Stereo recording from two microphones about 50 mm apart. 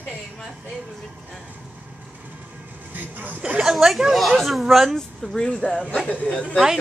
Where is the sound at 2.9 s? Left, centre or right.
Right.